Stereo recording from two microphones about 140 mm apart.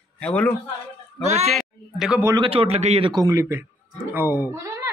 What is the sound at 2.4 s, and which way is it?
Speech, 40° right (ahead or behind).